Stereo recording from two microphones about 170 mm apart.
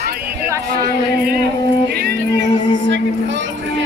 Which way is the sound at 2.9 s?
90° right.